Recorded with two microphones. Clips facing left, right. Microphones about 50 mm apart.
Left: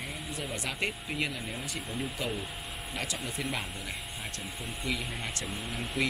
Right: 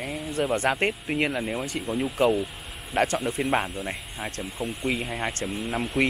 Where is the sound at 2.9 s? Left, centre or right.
Right.